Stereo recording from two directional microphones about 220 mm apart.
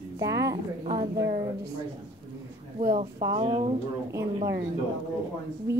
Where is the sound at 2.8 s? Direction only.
35° right (ahead or behind).